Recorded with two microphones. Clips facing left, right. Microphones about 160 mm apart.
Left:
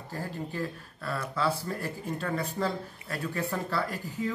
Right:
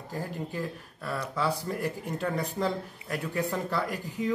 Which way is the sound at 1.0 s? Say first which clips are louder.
Even; 15° right (ahead or behind).